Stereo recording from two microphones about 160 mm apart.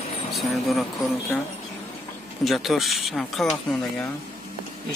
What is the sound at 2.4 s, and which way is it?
Speech, centre (ahead or behind).